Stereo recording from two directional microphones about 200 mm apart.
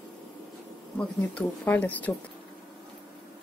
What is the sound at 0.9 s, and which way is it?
Speech, 5° left (ahead or behind).